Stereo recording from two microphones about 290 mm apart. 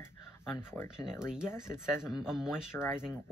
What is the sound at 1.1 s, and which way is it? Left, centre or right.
Speech, centre.